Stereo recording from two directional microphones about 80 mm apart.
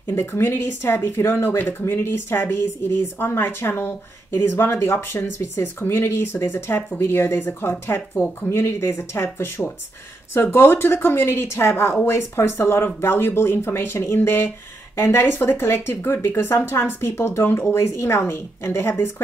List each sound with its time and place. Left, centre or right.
0.0 s speech: left